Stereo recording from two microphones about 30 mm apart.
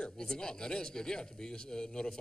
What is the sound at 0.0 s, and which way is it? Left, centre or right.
A woman's voice, left.